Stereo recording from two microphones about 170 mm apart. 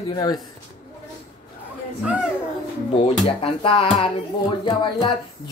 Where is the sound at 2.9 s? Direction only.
35° left (ahead or behind).